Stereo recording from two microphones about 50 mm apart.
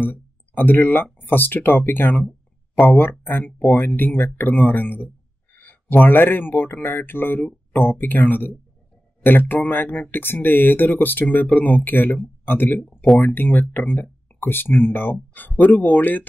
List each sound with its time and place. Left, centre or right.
0.0 s speech: left